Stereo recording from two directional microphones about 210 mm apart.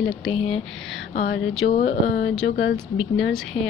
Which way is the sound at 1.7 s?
30° left (ahead or behind).